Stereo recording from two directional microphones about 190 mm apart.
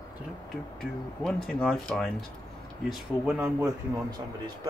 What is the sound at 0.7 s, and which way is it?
Speech, 5° left (ahead or behind).